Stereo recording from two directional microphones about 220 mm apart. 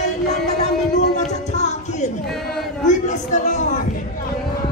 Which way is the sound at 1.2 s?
30° left (ahead or behind).